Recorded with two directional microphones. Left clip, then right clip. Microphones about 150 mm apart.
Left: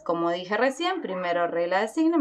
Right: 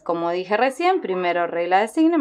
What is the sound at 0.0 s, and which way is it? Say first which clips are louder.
Speech: right 3 dB; 30° right (ahead or behind).